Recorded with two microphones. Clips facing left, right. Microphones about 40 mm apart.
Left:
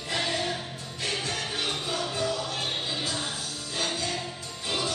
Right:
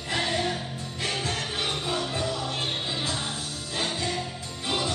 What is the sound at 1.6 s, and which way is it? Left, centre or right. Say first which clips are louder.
Music: right 2 dB; centre.